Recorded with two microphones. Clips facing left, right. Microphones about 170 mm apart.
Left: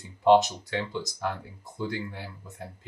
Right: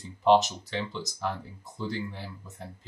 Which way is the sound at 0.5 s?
10° left (ahead or behind).